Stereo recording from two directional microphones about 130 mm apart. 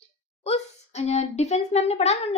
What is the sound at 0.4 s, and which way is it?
A child's voice, 55° left (ahead or behind).